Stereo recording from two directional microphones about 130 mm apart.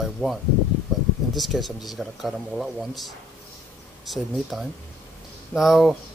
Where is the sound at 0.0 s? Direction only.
Centre (ahead or behind).